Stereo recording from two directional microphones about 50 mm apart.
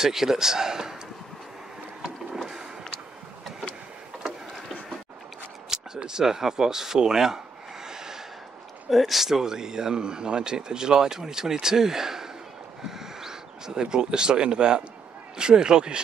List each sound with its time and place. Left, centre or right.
0.0 s speech: centre
2.3 s vehicle: centre
5.7 s speech: centre
7.8 s gasp: centre
8.9 s speech: centre
12.8 s a sound: centre
15.3 s speech: centre